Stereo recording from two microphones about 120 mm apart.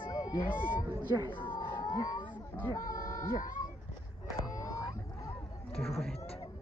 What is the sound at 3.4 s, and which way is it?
Speech, 90° left.